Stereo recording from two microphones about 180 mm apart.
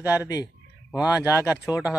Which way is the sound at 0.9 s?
5° right (ahead or behind).